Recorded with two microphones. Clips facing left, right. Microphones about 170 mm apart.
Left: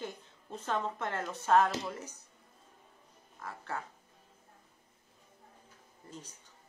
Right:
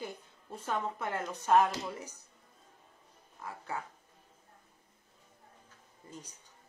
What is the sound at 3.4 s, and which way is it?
Speech, 10° right (ahead or behind).